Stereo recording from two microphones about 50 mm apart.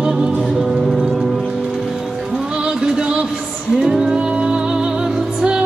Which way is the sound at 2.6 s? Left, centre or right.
Centre.